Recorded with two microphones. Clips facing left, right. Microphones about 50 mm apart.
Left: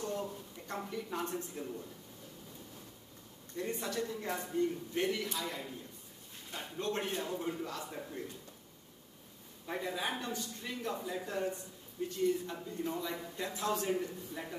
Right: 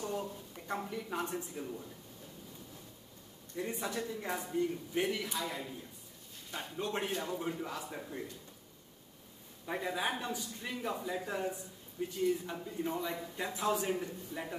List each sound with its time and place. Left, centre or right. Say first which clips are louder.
0.0 s a woman's voice: even; centre
3.5 s speech: even; centre
9.7 s speech: right 2 dB; centre